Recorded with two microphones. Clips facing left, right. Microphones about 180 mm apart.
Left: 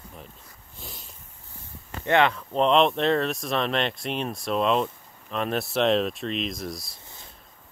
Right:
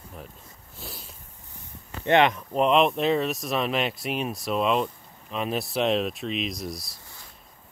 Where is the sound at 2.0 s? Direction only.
20° right (ahead or behind).